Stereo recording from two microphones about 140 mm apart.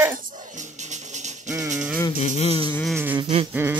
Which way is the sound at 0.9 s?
60° right (ahead or behind).